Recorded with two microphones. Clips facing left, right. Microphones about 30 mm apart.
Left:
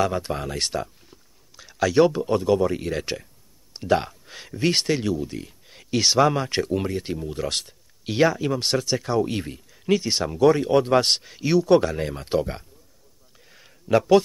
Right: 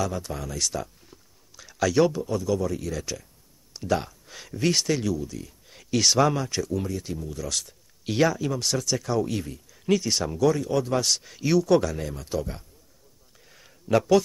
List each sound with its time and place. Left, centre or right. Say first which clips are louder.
0.0 s speech: left 5 dB; left
1.6 s speech: left 3 dB; centre
2.2 s speech: left 6 dB; left
3.7 s a sound: left 4 dB; left
4.4 s speech: left 2 dB; centre
5.1 s speech: left 3 dB; left
5.7 s speech: left 1 dB; centre
6.3 s speech: left 4 dB; left
8.0 s speech: left 3 dB; centre
8.5 s speech: left 3 dB; left
9.8 s speech: left 2 dB; left
10.4 s speech: left 6 dB; left
11.2 s speech: left 2 dB; centre; by 12.6 s left
13.5 s a sound: left 3 dB; centre